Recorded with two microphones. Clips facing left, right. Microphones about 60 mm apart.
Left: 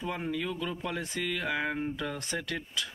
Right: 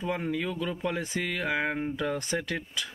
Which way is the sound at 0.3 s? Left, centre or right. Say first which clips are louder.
Right 2 dB; right.